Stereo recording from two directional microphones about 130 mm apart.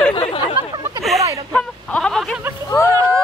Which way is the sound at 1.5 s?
5° left (ahead or behind).